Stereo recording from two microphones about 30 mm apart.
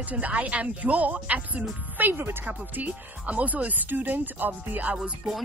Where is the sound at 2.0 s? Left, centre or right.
Right.